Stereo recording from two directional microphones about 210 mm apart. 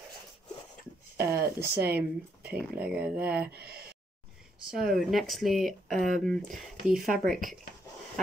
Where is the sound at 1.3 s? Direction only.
45° right (ahead or behind).